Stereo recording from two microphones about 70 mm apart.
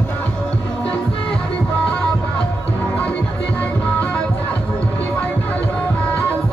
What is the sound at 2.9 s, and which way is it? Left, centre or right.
Music, left.